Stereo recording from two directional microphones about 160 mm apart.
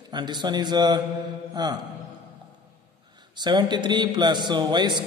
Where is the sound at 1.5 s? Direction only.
25° right (ahead or behind).